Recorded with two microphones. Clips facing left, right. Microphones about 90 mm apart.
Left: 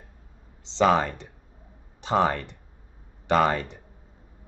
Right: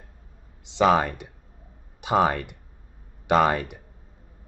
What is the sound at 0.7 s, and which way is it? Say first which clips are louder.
Speech: right 1 dB; 10° right (ahead or behind).